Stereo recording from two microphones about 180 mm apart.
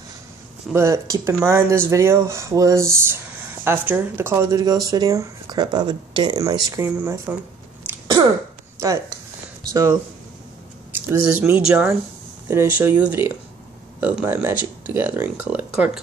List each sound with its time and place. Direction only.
0.7 s speech: 15° right (ahead or behind)
8.7 s a sound: 15° right (ahead or behind)
9.6 s speech: 20° right (ahead or behind)
11.3 s speech: 15° right (ahead or behind)